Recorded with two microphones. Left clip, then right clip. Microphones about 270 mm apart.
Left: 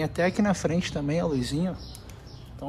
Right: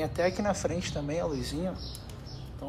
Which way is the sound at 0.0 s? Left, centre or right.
Left.